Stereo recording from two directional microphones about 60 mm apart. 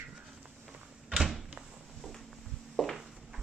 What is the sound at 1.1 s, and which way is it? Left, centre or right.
Door, centre.